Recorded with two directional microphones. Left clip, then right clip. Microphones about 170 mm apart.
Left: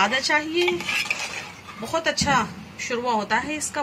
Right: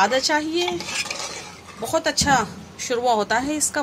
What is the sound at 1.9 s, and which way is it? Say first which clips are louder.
A woman's voice: right 2 dB; 70° right (ahead or behind).